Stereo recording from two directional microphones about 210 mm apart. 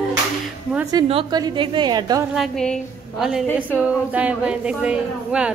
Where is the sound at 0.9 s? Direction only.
25° right (ahead or behind).